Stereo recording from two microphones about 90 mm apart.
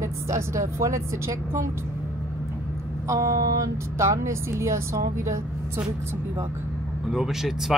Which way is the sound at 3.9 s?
35° right (ahead or behind).